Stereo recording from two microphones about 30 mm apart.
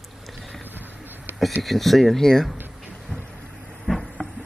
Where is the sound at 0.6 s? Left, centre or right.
Right.